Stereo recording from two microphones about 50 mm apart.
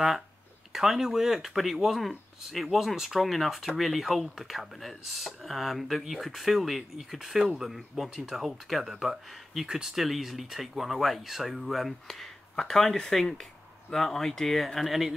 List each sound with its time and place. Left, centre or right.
0.7 s speech: centre